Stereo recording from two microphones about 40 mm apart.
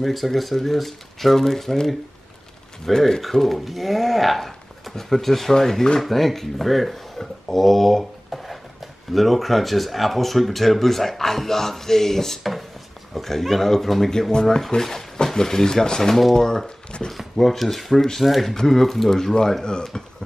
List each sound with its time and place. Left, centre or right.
0.0 s speech: centre
14.3 s speech: centre
17.4 s speech: centre